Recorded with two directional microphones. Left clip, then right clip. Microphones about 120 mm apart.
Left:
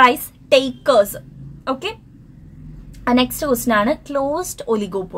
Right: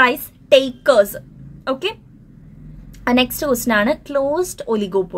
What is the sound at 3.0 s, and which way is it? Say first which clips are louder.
A woman's voice: even; 30° right (ahead or behind).